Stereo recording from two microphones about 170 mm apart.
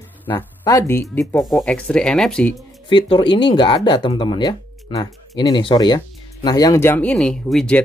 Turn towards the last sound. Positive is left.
turn(degrees=5)  # may be behind; listen again after turning